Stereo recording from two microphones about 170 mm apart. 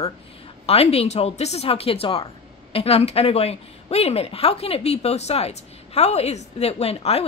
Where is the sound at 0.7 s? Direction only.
35° left (ahead or behind).